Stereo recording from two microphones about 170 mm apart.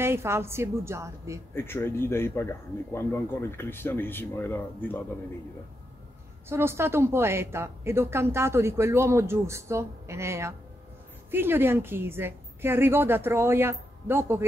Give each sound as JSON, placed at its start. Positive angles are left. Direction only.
{"t": 0.0, "sound": "a woman's voice", "side_deg": -15}
{"t": 1.5, "sound": "speech", "side_deg": 15}
{"t": 6.5, "sound": "a woman's voice", "side_deg": -15}